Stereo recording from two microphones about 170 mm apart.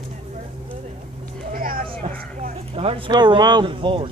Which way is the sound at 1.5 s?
55° right (ahead or behind).